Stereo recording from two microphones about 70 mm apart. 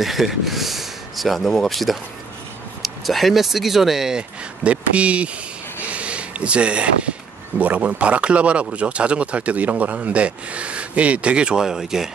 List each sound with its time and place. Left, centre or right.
0.0 s speech: centre
5.9 s a sound: centre
7.5 s speech: right